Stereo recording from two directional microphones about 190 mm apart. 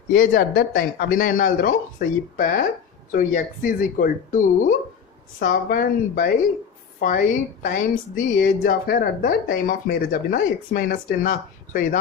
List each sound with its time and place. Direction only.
0.1 s a woman's voice: 50° left (ahead or behind)